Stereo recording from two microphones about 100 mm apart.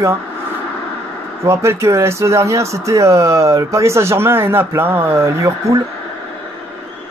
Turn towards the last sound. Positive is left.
turn(degrees=-30)  # may be behind; listen again after turning